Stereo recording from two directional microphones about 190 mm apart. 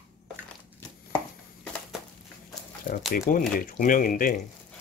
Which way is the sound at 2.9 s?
40° left (ahead or behind).